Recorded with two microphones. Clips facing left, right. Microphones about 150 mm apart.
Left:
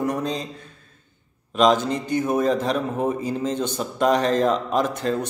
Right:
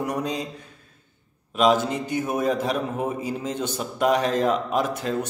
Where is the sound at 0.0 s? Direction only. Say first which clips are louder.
Left 2 dB; 10° right (ahead or behind).